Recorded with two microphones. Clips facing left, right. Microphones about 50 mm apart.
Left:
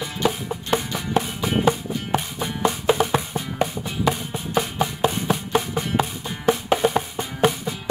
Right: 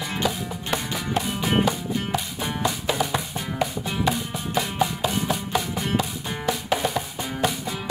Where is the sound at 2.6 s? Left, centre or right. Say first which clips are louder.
Left 6 dB; left.